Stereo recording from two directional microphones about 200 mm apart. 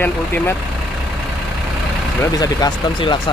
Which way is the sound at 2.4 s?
20° left (ahead or behind).